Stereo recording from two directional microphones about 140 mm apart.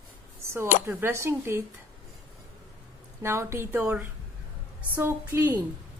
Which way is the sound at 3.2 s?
20° right (ahead or behind).